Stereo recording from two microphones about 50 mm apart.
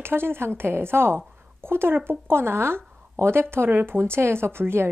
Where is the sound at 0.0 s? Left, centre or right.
Right.